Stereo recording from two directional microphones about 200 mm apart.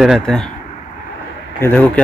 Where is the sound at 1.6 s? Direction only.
10° left (ahead or behind).